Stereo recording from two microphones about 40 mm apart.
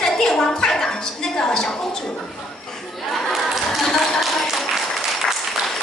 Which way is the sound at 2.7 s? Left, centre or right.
Centre.